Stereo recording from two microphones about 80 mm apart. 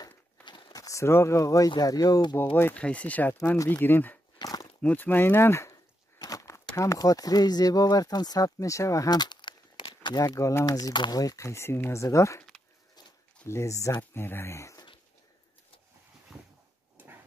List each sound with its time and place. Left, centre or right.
0.0 s a sound: left
0.7 s speech: left
2.5 s speech: left
4.4 s a sound: left
4.8 s speech: left
6.1 s a sound: left
6.8 s speech: left
9.2 s a sound: left
10.1 s speech: left
11.1 s speech: left
13.5 s speech: left
14.1 s speech: left